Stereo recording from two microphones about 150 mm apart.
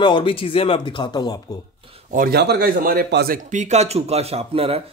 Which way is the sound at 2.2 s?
90° right.